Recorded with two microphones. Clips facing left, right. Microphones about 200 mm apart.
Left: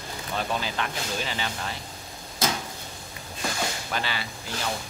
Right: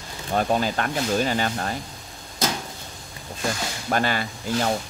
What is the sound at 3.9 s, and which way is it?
Speech, 50° right (ahead or behind).